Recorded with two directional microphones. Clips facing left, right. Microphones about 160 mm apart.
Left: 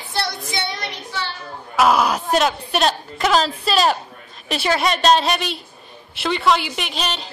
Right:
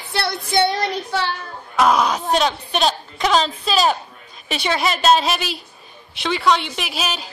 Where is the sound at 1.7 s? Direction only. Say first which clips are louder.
Even; 5° left (ahead or behind).